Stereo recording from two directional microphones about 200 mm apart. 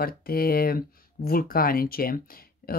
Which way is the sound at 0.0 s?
50° left (ahead or behind).